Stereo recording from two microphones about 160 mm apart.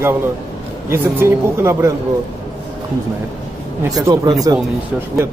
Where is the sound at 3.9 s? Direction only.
25° right (ahead or behind).